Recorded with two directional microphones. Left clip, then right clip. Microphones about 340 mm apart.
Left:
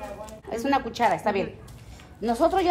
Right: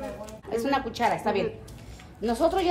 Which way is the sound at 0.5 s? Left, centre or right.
Left.